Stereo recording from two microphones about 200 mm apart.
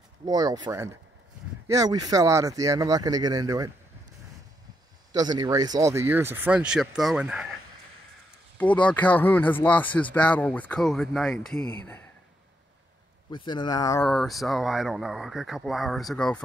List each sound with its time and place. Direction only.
0.2 s speech: 20° right (ahead or behind)
5.1 s speech: 20° right (ahead or behind)
8.5 s speech: 5° left (ahead or behind)
13.3 s speech: 25° left (ahead or behind)
14.0 s speech: centre (ahead or behind)